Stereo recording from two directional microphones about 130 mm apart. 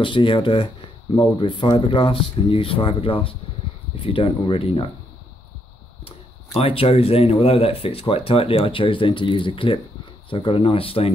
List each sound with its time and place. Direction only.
0.0 s speech: 40° left (ahead or behind)
6.0 s speech: 45° left (ahead or behind)